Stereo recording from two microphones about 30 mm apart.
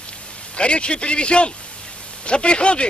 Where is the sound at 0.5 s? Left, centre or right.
Left.